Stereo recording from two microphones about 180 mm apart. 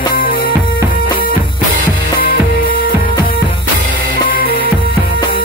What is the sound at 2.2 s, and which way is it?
Music, 55° left (ahead or behind).